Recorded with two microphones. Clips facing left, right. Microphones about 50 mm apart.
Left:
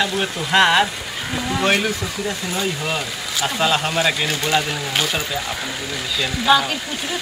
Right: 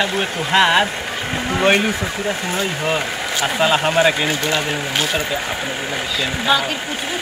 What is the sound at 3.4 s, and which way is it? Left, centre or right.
Speech, centre.